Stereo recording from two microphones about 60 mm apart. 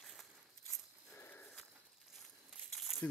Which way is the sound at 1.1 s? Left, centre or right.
Left.